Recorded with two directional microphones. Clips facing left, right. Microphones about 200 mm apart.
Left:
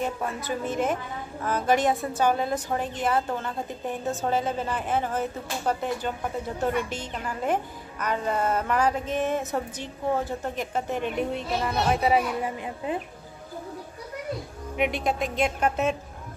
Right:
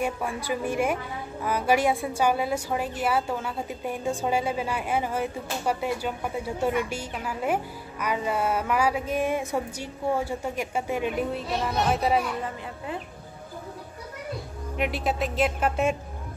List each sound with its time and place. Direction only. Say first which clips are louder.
0.0 s a woman's voice: right 1 dB; 10° right (ahead or behind)
12.4 s a child's voice: left 4 dB; 20° left (ahead or behind)
14.8 s speech: left 1 dB; 5° right (ahead or behind)